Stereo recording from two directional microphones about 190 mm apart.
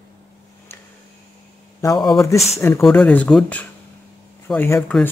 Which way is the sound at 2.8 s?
Centre (ahead or behind).